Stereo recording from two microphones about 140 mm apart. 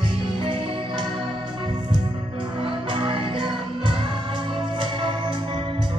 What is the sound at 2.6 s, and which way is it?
Music, 35° right (ahead or behind).